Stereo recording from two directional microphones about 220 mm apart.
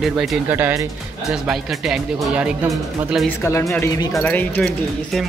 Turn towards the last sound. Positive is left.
turn(degrees=5)  # may be behind; listen again after turning